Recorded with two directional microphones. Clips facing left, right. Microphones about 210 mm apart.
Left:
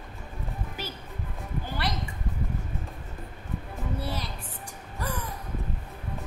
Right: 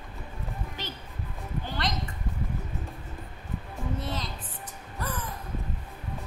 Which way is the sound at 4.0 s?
10° left (ahead or behind).